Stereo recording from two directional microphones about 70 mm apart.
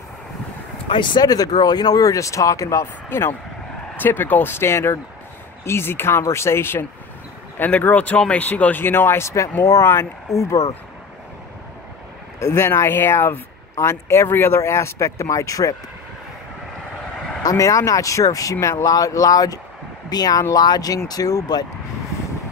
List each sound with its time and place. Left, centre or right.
1.1 s speech: left
3.1 s speech: left
7.8 s speech: left
12.4 s speech: left
17.4 s speech: left